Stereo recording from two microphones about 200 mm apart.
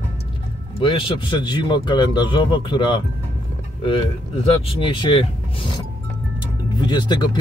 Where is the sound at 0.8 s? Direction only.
25° left (ahead or behind).